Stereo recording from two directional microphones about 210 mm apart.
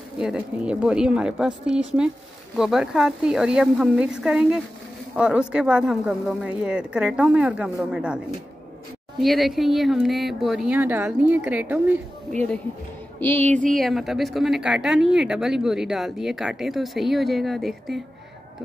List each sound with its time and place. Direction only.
0.2 s a woman's voice: 5° right (ahead or behind)
9.2 s a woman's voice: centre (ahead or behind)
13.4 s speech: 35° right (ahead or behind)
13.7 s a woman's voice: centre (ahead or behind)